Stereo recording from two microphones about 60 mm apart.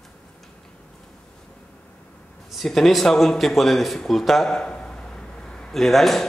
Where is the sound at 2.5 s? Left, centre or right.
Centre.